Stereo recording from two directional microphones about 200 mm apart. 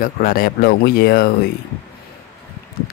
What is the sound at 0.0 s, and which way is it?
Speech, 45° left (ahead or behind).